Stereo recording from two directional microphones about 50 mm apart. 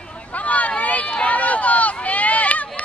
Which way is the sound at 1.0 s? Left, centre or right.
Left.